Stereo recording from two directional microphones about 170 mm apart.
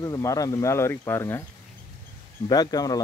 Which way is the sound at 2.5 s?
20° left (ahead or behind).